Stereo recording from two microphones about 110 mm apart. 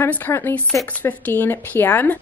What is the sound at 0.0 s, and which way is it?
A woman's voice, 20° left (ahead or behind).